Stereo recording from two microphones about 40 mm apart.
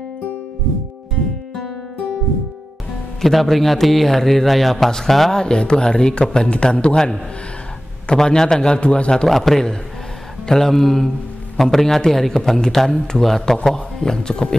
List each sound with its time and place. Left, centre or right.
3.2 s a man's voice: centre
5.3 s a man's voice: left
8.1 s a man's voice: centre
9.3 s a man's voice: centre